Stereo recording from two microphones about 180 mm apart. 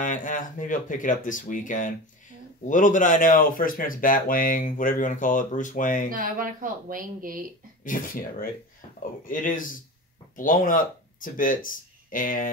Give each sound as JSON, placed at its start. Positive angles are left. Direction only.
{"t": 0.0, "sound": "speech", "side_deg": 45}
{"t": 6.0, "sound": "speech", "side_deg": -50}
{"t": 7.8, "sound": "speech", "side_deg": 50}